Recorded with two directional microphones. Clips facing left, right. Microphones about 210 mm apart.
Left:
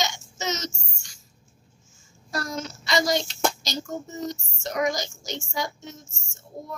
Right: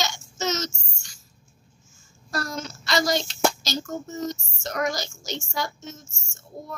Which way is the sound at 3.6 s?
15° left (ahead or behind).